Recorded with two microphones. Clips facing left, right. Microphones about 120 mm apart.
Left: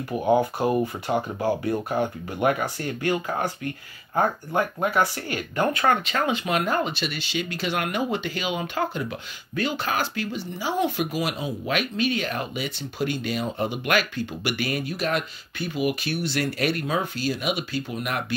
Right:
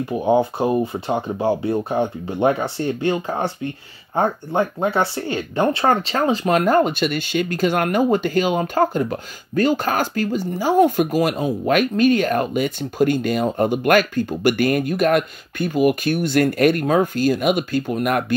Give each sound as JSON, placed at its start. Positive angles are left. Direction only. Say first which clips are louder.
{"t": 0.1, "sound": "speech", "louder": "right 3 dB", "side_deg": -20}